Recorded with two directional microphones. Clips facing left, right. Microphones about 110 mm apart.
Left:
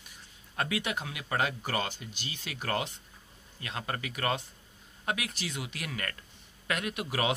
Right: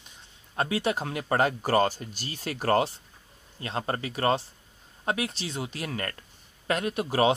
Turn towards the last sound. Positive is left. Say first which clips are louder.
# right 8 dB
turn(degrees=-30)  # may be behind; listen again after turning